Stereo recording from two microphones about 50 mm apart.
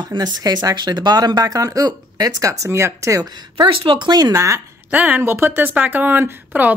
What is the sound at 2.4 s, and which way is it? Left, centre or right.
Speech, right.